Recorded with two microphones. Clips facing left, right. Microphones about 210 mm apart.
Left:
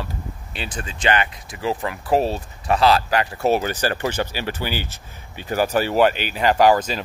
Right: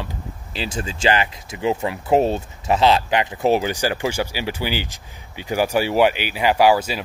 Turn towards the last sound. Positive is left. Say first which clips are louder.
# even
turn(degrees=-10)  # may be behind; listen again after turning